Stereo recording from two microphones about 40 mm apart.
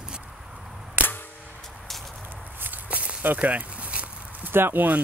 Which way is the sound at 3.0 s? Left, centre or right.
Right.